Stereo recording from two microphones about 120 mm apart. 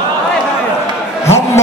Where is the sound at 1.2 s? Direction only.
20° left (ahead or behind).